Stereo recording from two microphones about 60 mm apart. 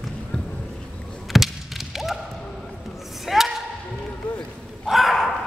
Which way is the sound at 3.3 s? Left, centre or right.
Centre.